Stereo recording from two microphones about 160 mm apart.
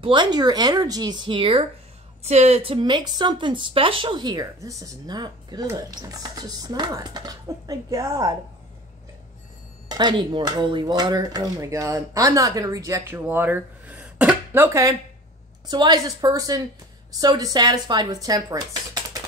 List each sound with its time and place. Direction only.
0.0 s speech: 30° right (ahead or behind)
9.8 s speech: 30° right (ahead or behind)